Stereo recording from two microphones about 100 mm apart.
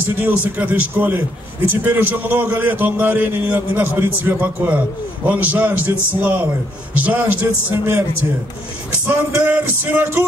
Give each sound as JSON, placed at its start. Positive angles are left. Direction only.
{"t": 0.2, "sound": "a man's voice", "side_deg": -15}
{"t": 9.0, "sound": "a man's voice", "side_deg": -20}